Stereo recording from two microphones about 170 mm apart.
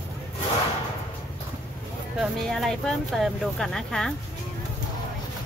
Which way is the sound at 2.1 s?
Centre (ahead or behind).